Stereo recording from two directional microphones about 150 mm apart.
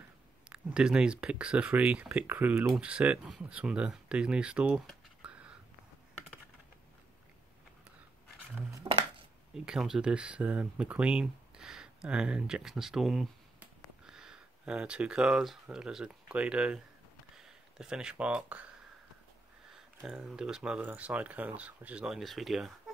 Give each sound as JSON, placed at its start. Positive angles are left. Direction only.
{"t": 0.5, "sound": "speech", "side_deg": -5}
{"t": 5.2, "sound": "a sound", "side_deg": -5}
{"t": 8.8, "sound": "dishes", "side_deg": -35}
{"t": 9.7, "sound": "speech", "side_deg": -5}
{"t": 19.7, "sound": "speech", "side_deg": -5}